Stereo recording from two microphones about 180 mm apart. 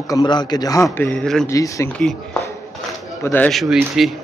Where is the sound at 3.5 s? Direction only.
Centre (ahead or behind).